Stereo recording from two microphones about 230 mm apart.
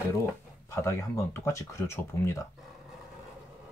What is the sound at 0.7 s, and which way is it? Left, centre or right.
Speech, centre.